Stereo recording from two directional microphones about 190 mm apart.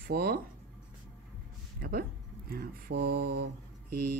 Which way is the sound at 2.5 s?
55° right (ahead or behind).